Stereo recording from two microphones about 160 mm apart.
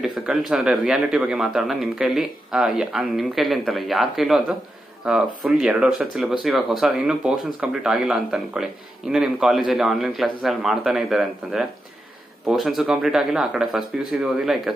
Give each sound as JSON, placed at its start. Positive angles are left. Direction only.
{"t": 0.0, "sound": "a man's voice", "side_deg": -5}